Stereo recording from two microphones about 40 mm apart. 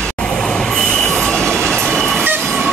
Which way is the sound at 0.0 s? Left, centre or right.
Left.